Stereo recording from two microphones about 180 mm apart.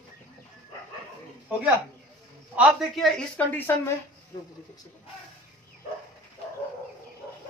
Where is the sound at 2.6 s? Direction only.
5° right (ahead or behind).